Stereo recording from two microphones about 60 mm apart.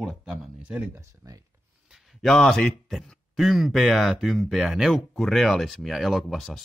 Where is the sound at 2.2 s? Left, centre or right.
Centre.